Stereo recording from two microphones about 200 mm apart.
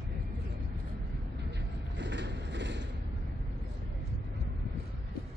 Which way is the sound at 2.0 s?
60° right (ahead or behind).